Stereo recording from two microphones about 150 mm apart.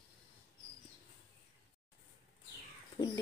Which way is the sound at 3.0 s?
30° left (ahead or behind).